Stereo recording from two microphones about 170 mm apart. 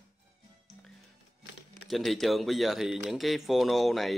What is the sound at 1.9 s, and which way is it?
Speech, centre (ahead or behind).